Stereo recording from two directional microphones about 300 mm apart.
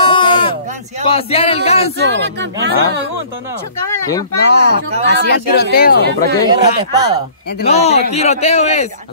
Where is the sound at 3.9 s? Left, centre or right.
Centre.